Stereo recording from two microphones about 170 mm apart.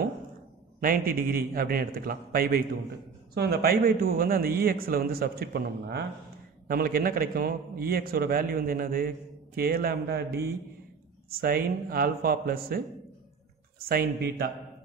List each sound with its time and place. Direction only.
0.7 s a man's voice: 55° right (ahead or behind)